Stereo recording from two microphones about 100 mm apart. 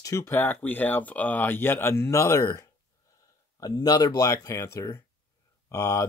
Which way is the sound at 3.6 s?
40° left (ahead or behind).